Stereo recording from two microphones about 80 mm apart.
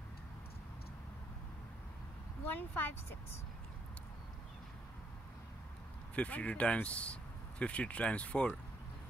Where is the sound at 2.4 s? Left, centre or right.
Left.